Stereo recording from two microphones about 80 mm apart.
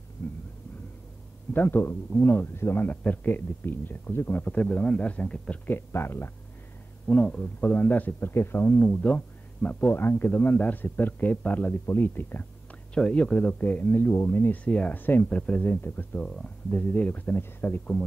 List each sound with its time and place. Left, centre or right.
1.5 s speech: left
5.7 s speech: left
7.1 s speech: centre
12.9 s speech: centre
16.2 s speech: centre; by 17.7 s left